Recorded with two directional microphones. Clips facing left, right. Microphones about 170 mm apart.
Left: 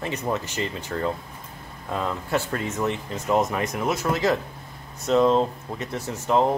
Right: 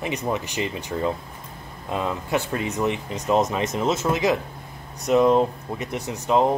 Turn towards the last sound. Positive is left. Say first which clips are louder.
# right 1 dB
turn(degrees=-15)  # may be behind; listen again after turning